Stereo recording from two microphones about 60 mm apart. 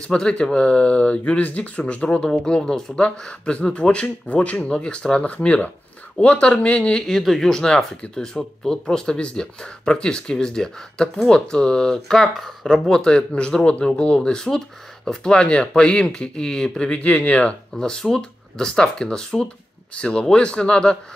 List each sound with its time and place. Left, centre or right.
0.1 s speech: centre
6.9 s speech: centre